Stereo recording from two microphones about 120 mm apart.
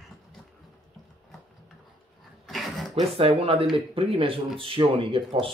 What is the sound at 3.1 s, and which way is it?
Speech, 60° right (ahead or behind).